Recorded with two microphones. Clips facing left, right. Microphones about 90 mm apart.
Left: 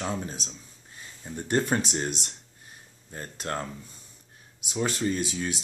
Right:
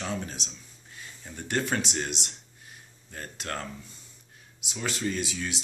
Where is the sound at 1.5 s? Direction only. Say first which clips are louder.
Left 3 dB; 40° left (ahead or behind).